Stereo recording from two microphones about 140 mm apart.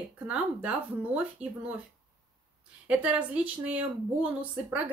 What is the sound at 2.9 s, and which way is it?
A woman's voice, 10° right (ahead or behind).